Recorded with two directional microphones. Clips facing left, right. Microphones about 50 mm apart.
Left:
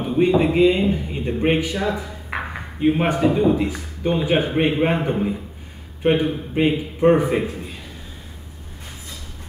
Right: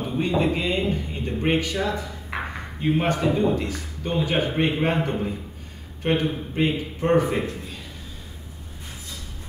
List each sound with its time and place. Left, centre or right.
0.0 s speech: centre